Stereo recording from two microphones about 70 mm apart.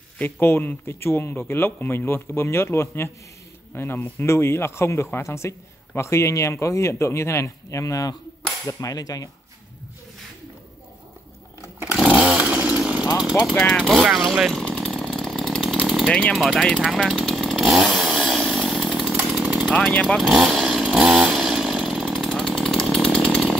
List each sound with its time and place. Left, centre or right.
0.2 s speech: left
8.6 s cap gun: left
11.9 s chainsaw: centre
12.8 s a sound: centre
13.2 s vehicle: centre
13.8 s speech: centre
14.5 s chainsaw: centre
16.1 s speech: centre
16.3 s speech: centre
16.7 s chainsaw: centre
19.4 s chainsaw: centre
19.9 s speech: centre
20.2 s chainsaw: centre